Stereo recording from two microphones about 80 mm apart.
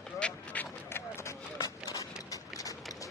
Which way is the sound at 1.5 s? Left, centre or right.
Left.